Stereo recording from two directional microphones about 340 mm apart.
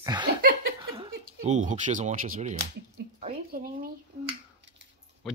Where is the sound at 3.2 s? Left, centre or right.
Right.